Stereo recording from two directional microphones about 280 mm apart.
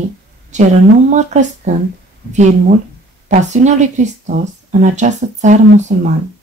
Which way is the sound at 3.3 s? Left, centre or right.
Right.